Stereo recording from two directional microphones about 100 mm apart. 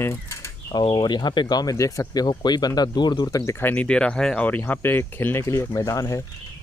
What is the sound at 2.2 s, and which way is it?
Speech, 45° left (ahead or behind).